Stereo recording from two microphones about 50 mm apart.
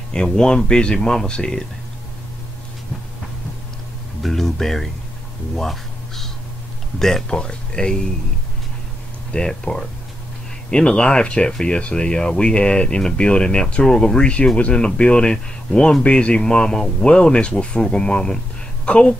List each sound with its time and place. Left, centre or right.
0.1 s speech: centre
4.2 s speech: centre
5.6 s a sound: centre
7.0 s speech: centre
9.3 s speech: centre